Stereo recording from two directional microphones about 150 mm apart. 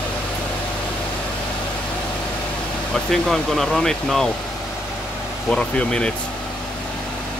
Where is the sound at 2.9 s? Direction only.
Centre (ahead or behind).